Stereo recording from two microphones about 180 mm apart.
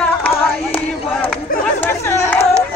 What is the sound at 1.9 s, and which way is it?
Chatter, 15° left (ahead or behind).